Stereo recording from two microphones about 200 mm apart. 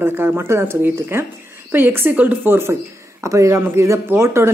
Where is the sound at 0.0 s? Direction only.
10° right (ahead or behind).